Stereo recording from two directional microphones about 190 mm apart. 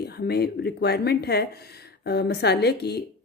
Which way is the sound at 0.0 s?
55° left (ahead or behind).